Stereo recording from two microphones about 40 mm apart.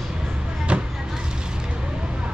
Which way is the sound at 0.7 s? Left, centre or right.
Right.